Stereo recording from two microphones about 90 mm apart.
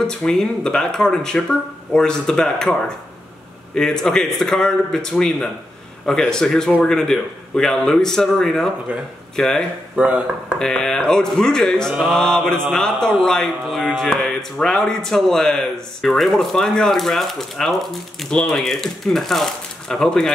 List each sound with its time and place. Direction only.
0.0 s speech: 10° left (ahead or behind)
3.7 s speech: 5° left (ahead or behind)
9.9 s speech: 15° right (ahead or behind)
10.6 s speech: 5° left (ahead or behind)